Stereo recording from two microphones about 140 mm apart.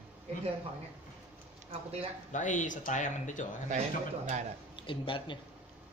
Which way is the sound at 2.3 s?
65° left (ahead or behind).